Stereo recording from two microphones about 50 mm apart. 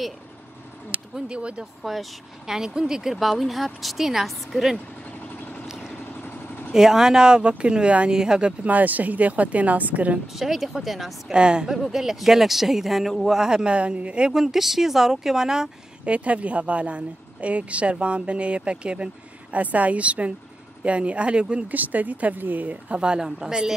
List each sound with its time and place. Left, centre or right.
1.1 s speech: right
1.8 s speech: centre
5.7 s vehicle: centre
6.2 s vehicle: left
6.7 s speech: centre
8.6 s speech: right
10.3 s speech: centre
11.3 s speech: centre
11.7 s speech: centre
13.4 s speech: centre
14.3 s speech: centre
16.1 s speech: right
21.6 s speech: right
22.9 s speech: centre